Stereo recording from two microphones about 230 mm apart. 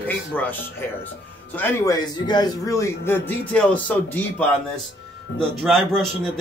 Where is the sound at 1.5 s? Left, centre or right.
Centre.